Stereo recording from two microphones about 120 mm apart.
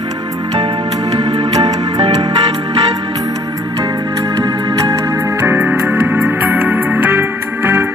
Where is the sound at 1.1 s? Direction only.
60° right (ahead or behind).